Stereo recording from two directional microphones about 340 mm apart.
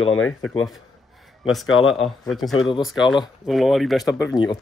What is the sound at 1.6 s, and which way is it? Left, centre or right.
Speech, left.